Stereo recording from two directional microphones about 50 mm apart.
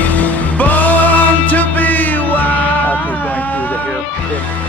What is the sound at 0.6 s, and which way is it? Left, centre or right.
Music, left.